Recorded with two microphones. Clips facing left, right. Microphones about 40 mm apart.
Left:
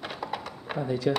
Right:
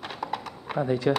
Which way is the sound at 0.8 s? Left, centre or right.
Right.